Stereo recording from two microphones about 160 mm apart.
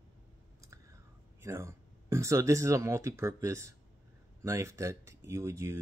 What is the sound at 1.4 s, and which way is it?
Speech, 15° right (ahead or behind).